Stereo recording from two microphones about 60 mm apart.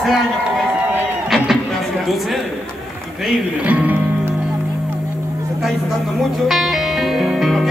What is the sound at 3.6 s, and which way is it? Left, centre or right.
Music, right.